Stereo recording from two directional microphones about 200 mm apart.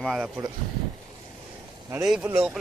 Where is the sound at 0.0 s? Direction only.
Centre (ahead or behind).